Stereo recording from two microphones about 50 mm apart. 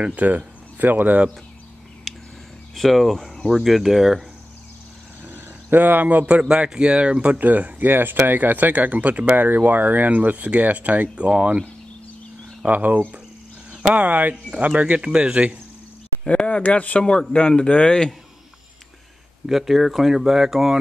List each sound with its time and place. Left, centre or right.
0.0 s speech: right
2.7 s speech: centre
5.2 s a sound: right
6.5 s speech: centre
7.3 s speech: right
12.6 s speech: right
16.3 s speech: left
17.0 s speech: centre
19.4 s speech: centre